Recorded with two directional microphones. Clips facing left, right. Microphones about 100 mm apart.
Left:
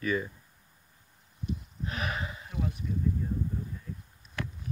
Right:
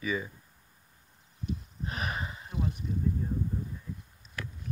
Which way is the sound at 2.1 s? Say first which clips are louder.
Even; 30° right (ahead or behind).